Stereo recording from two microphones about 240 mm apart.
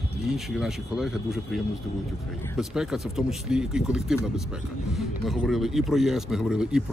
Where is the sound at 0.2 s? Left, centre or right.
Centre.